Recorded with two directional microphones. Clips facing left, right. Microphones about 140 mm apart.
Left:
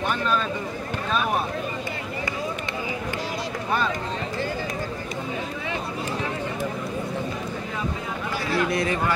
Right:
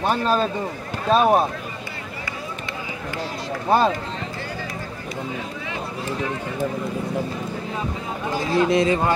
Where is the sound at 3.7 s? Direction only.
30° right (ahead or behind).